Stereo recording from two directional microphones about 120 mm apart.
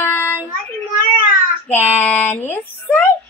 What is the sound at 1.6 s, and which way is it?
Child singing, 15° left (ahead or behind).